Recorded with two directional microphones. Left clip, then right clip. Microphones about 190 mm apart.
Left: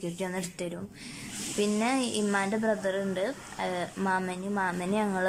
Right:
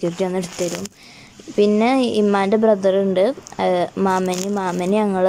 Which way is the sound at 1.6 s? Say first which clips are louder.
Right 13 dB; 20° right (ahead or behind).